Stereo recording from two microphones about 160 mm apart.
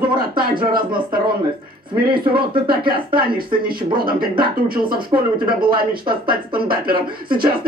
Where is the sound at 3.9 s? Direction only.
65° right (ahead or behind).